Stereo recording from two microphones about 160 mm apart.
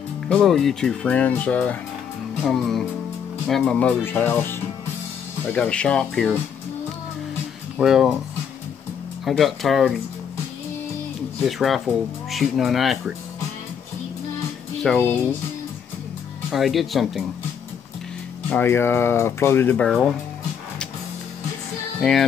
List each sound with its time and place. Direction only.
0.4 s speech: centre (ahead or behind)
7.7 s speech: 5° right (ahead or behind)
9.2 s speech: centre (ahead or behind)
11.4 s speech: centre (ahead or behind)
14.8 s speech: 5° left (ahead or behind)
16.4 s speech: centre (ahead or behind)
18.5 s speech: 15° left (ahead or behind)
22.0 s speech: 5° left (ahead or behind)